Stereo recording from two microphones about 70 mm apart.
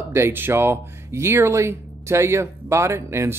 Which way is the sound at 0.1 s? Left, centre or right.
Right.